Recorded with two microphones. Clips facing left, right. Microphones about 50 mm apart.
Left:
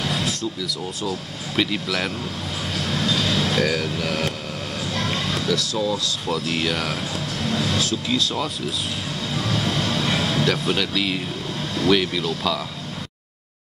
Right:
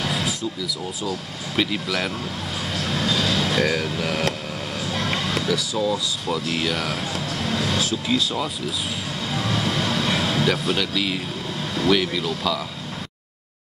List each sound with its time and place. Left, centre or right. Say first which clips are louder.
0.1 s a sound: even; centre
1.6 s speech: even; centre
2.8 s vehicle: even; centre
3.9 s speech: even; centre
4.9 s music: right 1 dB; centre
5.8 s speech: even; centre
7.4 s vehicle: left 1 dB; centre
8.1 s speech: right 2 dB; centre
9.3 s vehicle: even; centre
10.6 s speech: left 1 dB; centre